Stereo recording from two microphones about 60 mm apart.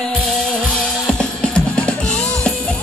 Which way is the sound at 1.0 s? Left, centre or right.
Centre.